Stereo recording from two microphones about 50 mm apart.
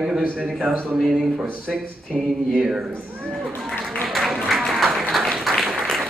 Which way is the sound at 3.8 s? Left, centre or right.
Centre.